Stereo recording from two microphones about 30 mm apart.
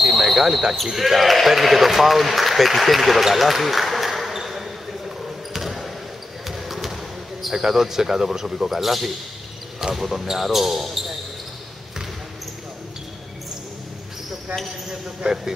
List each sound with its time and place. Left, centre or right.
0.0 s basketball bounce: centre
0.9 s speech: centre
3.3 s basketball bounce: centre
7.5 s speech: centre
15.2 s speech: right